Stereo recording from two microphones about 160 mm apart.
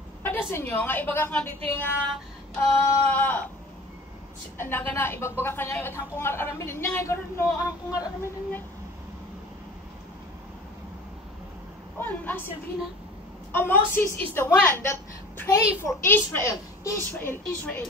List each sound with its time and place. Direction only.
0.2 s a woman's voice: 10° left (ahead or behind)
4.6 s a woman's voice: 15° left (ahead or behind)
12.0 s a woman's voice: 10° left (ahead or behind)
13.5 s a woman's voice: 15° left (ahead or behind)